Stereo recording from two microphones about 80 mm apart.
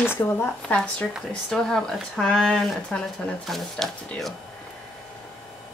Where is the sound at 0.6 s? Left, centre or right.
Centre.